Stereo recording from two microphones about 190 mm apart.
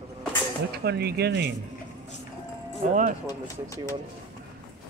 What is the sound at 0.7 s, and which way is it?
Speech, 60° right (ahead or behind).